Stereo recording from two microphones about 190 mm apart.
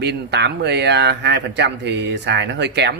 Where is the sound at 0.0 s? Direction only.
60° right (ahead or behind).